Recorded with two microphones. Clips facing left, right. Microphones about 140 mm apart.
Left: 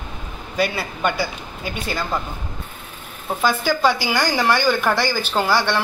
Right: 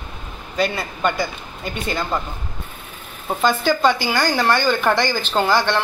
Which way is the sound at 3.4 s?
10° left (ahead or behind).